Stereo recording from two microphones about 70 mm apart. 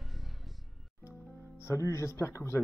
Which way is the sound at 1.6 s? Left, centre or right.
Left.